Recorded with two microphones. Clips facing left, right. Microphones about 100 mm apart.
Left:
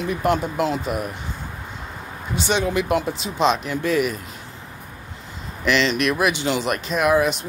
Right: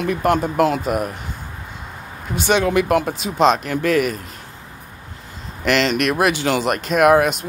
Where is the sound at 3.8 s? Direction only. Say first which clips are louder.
Right 3 dB; 55° right (ahead or behind).